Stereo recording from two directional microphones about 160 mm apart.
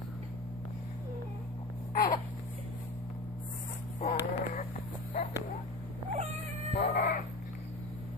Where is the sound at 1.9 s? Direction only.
65° left (ahead or behind).